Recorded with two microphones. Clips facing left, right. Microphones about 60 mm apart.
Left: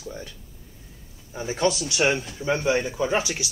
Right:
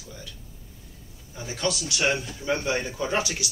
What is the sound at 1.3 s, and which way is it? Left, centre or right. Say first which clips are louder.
A man's voice: left 5 dB; left.